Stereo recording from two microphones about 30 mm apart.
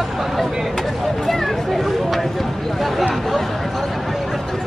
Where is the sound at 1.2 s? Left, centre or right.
Centre.